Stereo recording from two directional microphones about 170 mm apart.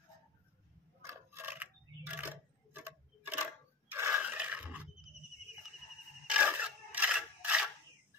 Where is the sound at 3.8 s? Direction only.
15° right (ahead or behind).